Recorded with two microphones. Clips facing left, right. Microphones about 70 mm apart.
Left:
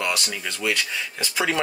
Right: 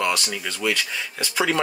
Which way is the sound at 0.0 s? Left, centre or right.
Centre.